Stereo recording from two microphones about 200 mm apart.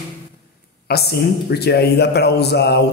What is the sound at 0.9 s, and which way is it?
A man's voice, 55° left (ahead or behind).